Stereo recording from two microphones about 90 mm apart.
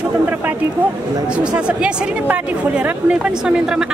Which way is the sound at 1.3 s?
10° right (ahead or behind).